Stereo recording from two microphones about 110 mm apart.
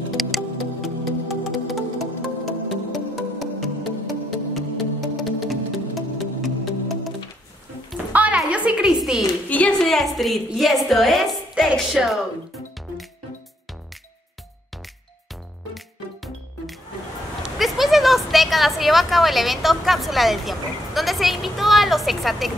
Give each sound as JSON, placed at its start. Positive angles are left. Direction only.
{"t": 0.1, "sound": "music", "side_deg": 0}
{"t": 8.1, "sound": "music", "side_deg": -15}
{"t": 8.4, "sound": "a sound", "side_deg": -10}
{"t": 9.5, "sound": "a woman's voice", "side_deg": 10}
{"t": 17.4, "sound": "a woman's voice", "side_deg": 0}